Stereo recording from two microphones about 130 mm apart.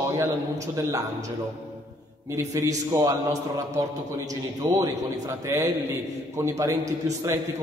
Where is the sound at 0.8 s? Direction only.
25° right (ahead or behind).